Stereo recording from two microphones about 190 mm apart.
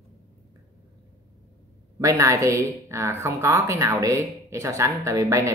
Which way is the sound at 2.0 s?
15° right (ahead or behind).